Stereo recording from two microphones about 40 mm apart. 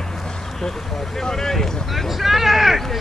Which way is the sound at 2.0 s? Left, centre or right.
Centre.